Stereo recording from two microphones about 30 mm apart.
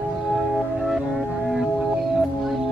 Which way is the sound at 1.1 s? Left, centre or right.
Centre.